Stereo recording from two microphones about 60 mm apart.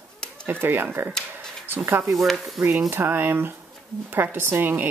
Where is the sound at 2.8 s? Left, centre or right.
Right.